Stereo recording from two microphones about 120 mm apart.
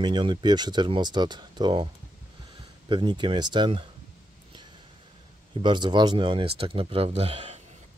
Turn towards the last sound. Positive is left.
turn(degrees=-55)  # may be behind; listen again after turning